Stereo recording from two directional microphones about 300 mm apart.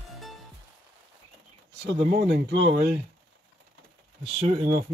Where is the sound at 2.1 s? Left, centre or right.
Right.